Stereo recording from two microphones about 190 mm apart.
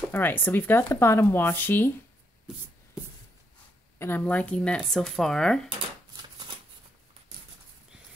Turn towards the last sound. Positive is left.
turn(degrees=-20)  # may be behind; listen again after turning